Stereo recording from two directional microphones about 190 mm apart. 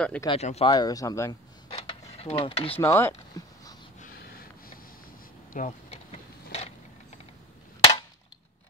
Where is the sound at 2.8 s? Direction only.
15° left (ahead or behind).